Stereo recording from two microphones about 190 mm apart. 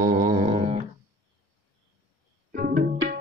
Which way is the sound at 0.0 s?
40° right (ahead or behind).